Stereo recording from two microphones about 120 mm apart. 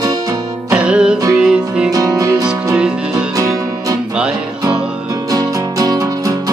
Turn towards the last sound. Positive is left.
turn(degrees=-30)  # may be behind; listen again after turning